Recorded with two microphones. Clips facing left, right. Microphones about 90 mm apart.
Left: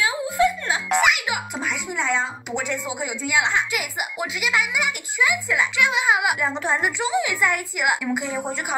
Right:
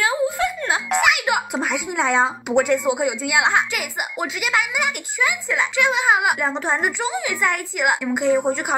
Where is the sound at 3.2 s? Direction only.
65° right (ahead or behind).